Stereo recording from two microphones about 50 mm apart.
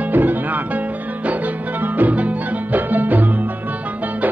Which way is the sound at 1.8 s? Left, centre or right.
Right.